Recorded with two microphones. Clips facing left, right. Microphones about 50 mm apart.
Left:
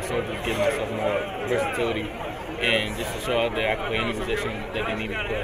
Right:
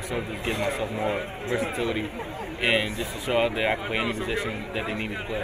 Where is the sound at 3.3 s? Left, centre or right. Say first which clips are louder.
Even; centre.